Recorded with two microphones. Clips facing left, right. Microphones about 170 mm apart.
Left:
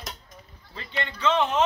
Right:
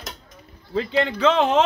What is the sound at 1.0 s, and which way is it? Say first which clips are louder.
Speech: right 4 dB; 90° right.